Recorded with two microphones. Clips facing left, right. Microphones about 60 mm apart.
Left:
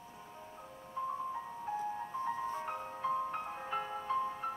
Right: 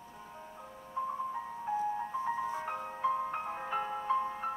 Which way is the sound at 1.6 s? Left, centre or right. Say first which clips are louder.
Right 5 dB; centre.